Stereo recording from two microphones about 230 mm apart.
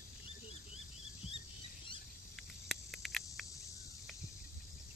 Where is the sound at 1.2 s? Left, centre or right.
Left.